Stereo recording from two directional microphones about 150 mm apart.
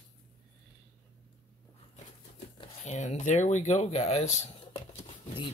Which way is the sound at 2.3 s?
45° left (ahead or behind).